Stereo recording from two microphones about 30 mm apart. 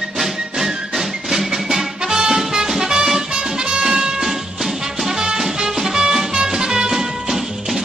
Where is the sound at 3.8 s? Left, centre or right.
Centre.